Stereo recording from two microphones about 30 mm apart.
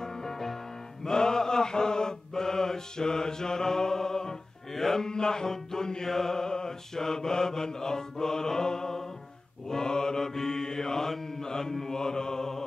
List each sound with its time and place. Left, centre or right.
0.0 s music: centre
1.0 s mantra: left